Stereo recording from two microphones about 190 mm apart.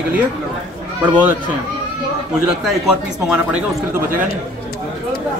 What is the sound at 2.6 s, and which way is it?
Speech, 5° right (ahead or behind).